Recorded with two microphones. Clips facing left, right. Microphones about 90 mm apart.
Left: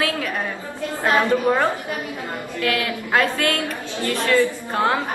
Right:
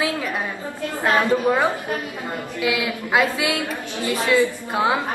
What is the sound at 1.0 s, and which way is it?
A woman's voice, 15° right (ahead or behind).